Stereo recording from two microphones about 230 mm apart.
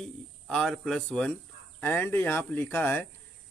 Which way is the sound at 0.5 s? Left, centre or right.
Centre.